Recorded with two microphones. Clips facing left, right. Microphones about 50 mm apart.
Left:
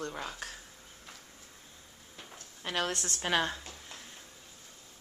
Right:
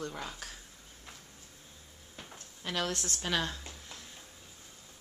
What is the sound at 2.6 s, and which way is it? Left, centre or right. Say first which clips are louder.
Speech: left 1 dB; left.